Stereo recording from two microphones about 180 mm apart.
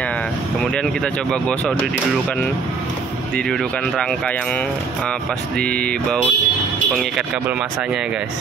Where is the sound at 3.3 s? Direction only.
Centre (ahead or behind).